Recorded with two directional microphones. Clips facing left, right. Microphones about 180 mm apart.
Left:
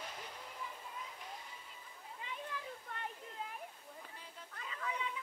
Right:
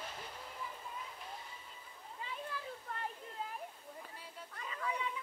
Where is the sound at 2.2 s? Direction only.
35° right (ahead or behind).